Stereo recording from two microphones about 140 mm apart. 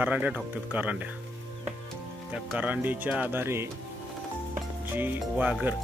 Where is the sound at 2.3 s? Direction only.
10° right (ahead or behind).